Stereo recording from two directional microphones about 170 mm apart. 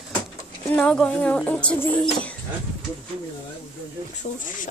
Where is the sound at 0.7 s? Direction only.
5° left (ahead or behind).